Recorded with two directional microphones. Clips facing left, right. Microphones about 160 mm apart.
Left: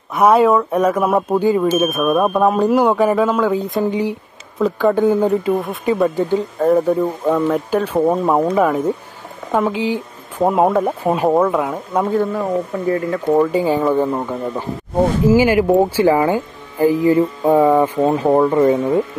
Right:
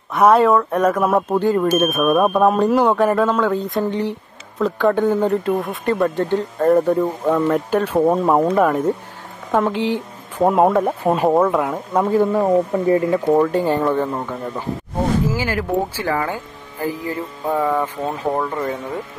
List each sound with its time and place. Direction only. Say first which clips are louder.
0.1 s speech: left 1 dB; 5° left (ahead or behind)
12.4 s speech: right 4 dB; 25° right (ahead or behind)
13.3 s speech: left 3 dB; 5° left (ahead or behind)
15.3 s speech: left 9 dB; 15° left (ahead or behind)